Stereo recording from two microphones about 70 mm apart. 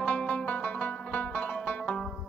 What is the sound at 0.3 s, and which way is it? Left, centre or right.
Music, centre.